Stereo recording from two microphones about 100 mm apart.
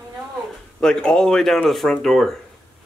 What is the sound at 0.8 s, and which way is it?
Speech, 10° left (ahead or behind).